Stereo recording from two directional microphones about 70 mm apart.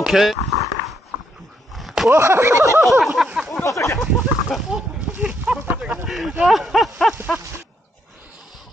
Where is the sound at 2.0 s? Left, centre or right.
Right.